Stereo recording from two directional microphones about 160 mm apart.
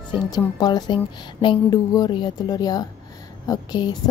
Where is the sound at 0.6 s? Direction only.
25° left (ahead or behind).